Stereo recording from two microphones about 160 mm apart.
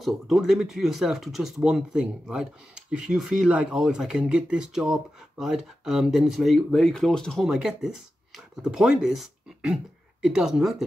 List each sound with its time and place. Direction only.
0.0 s speech: centre (ahead or behind)